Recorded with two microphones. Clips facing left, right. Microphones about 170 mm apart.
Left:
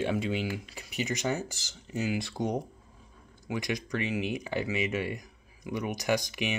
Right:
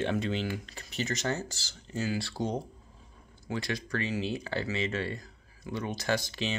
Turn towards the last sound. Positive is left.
turn(degrees=15)  # may be behind; listen again after turning